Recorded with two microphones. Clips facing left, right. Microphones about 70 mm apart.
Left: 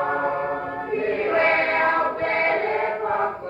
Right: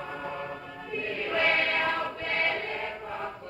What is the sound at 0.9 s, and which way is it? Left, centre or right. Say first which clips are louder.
Choir: left 9 dB; left.